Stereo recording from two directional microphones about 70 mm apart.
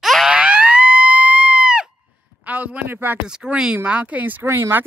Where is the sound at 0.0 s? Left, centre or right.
Centre.